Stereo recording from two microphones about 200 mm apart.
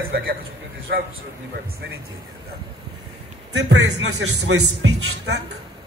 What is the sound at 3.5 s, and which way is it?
Speech, 60° right (ahead or behind).